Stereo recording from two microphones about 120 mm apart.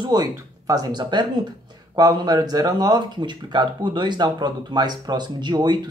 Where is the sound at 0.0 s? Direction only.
35° right (ahead or behind).